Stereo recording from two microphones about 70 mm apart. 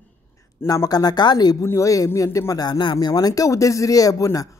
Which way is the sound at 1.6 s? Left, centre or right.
Left.